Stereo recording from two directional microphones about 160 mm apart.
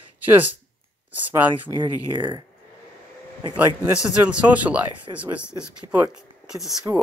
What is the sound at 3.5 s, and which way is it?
Speech, 10° right (ahead or behind).